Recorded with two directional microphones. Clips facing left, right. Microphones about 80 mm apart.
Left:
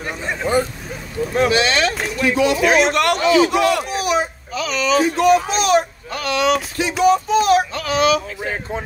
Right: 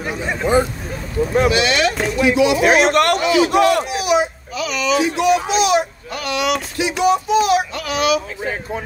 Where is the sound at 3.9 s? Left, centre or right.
Left.